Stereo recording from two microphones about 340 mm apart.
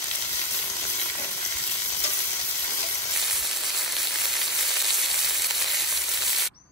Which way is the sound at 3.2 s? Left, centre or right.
Centre.